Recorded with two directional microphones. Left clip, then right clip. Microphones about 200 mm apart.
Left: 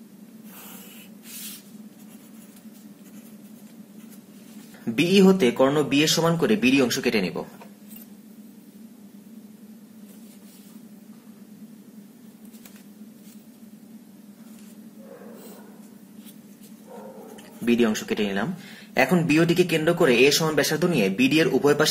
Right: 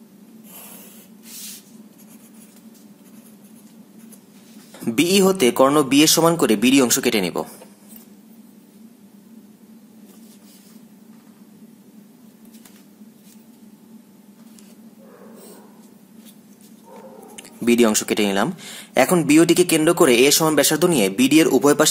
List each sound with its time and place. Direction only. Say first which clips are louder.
4.8 s a man's voice: right 2 dB; 40° right (ahead or behind)
17.6 s a man's voice: right 6 dB; 40° right (ahead or behind)